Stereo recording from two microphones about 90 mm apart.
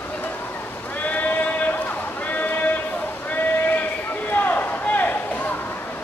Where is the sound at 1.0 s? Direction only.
20° left (ahead or behind).